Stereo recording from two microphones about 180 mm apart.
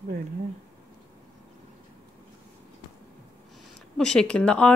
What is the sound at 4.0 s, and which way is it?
Speech, 5° left (ahead or behind).